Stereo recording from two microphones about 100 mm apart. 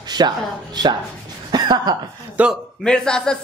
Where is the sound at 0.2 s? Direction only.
45° right (ahead or behind).